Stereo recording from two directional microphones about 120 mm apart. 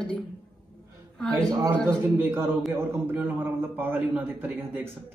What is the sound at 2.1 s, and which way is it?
A man's voice, 20° right (ahead or behind).